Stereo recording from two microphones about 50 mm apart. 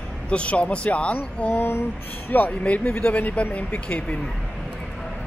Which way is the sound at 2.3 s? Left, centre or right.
Left.